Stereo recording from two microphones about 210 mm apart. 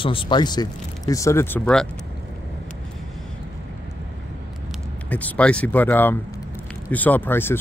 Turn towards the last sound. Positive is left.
turn(degrees=10)  # may be behind; listen again after turning